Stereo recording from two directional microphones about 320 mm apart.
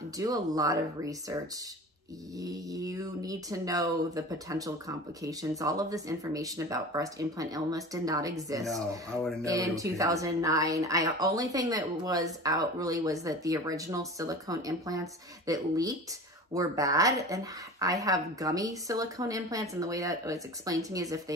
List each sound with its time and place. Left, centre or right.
0.2 s speech: centre